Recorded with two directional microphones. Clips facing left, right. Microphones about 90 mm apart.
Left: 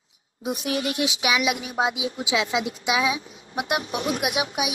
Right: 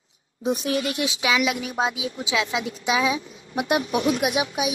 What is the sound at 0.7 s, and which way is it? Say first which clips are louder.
Speech: even; 25° left (ahead or behind).